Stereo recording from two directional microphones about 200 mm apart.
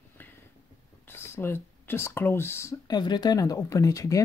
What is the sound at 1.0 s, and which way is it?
Speech, 10° left (ahead or behind).